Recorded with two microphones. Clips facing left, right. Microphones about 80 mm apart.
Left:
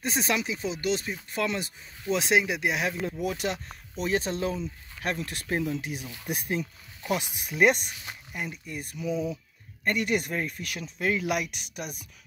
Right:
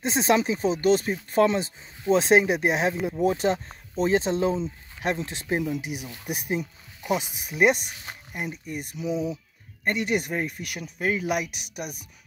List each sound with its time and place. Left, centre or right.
0.0 s speech: right
7.4 s speech: centre
8.3 s speech: centre